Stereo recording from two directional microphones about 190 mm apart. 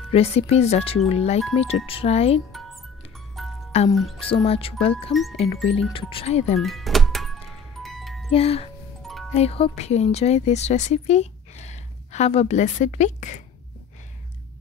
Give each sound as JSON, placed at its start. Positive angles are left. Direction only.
{"t": 0.1, "sound": "speech", "side_deg": 35}
{"t": 3.4, "sound": "music", "side_deg": 0}
{"t": 3.9, "sound": "speech", "side_deg": 0}
{"t": 4.2, "sound": "speech", "side_deg": 30}
{"t": 5.1, "sound": "speech", "side_deg": 0}
{"t": 5.9, "sound": "speech", "side_deg": 30}
{"t": 6.6, "sound": "music", "side_deg": 0}
{"t": 8.3, "sound": "speech", "side_deg": 30}
{"t": 9.0, "sound": "music", "side_deg": 0}
{"t": 9.3, "sound": "speech", "side_deg": 35}